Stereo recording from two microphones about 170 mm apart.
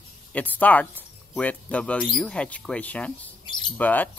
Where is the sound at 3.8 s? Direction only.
10° left (ahead or behind).